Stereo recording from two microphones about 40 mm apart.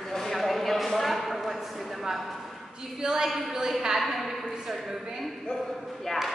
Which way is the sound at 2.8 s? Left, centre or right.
Centre.